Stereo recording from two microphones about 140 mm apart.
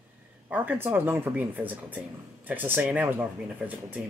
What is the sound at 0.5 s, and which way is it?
Speech, 15° right (ahead or behind).